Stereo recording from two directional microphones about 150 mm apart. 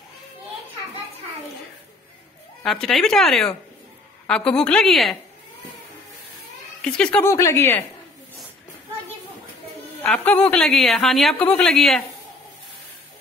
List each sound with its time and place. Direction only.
2.6 s a woman's voice: centre (ahead or behind)
6.8 s a woman's voice: 5° left (ahead or behind)
7.2 s a woman's voice: 15° left (ahead or behind)
10.0 s a woman's voice: 5° left (ahead or behind)